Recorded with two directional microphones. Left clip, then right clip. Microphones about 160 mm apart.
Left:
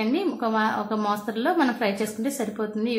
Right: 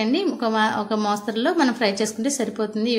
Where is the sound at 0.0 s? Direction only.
20° right (ahead or behind).